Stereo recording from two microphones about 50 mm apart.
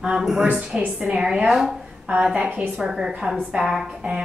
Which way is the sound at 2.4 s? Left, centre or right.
Centre.